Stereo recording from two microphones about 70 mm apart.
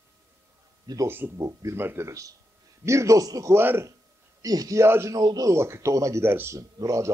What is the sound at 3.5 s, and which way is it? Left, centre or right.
Speech, right.